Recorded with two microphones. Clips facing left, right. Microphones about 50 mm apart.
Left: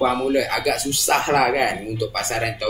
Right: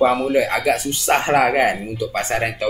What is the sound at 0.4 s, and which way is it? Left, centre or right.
Speech, right.